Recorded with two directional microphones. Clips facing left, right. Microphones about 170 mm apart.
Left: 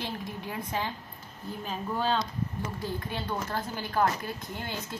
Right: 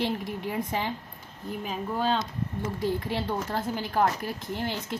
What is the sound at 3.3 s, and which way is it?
Speech, 25° right (ahead or behind).